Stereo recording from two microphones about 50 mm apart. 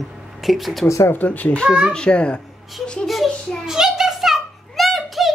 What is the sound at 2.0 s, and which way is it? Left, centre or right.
Speech, left.